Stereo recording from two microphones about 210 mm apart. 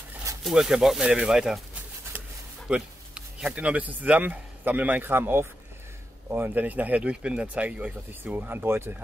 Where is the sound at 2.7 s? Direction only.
5° right (ahead or behind).